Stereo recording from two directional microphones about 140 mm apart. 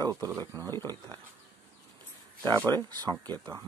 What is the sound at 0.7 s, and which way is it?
Speech, 20° left (ahead or behind).